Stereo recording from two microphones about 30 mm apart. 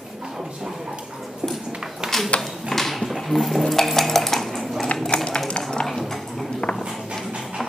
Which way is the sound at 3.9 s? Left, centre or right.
Centre.